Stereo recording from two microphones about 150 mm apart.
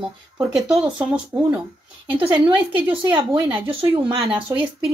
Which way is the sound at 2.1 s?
35° right (ahead or behind).